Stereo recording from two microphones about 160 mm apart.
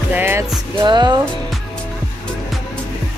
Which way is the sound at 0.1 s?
15° right (ahead or behind).